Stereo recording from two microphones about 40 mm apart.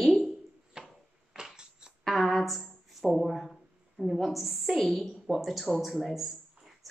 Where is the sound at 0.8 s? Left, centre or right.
Centre.